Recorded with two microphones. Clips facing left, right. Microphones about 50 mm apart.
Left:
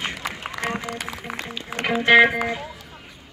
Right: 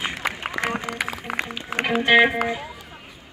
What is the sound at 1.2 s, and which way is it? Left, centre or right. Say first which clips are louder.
Music: right 3 dB; right.